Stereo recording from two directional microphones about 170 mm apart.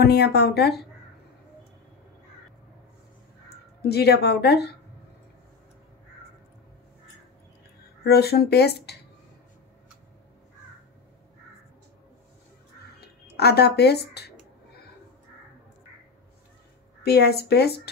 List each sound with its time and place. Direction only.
0.0 s speech: 70° left (ahead or behind)
3.9 s speech: 70° left (ahead or behind)
8.0 s speech: 70° left (ahead or behind)
13.3 s speech: 70° left (ahead or behind)
17.0 s speech: 70° left (ahead or behind)